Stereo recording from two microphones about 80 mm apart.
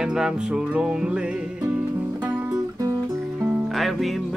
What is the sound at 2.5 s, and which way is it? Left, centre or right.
Music, right.